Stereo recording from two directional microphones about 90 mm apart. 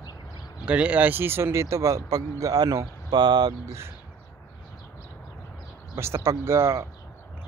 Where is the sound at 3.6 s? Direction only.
30° right (ahead or behind).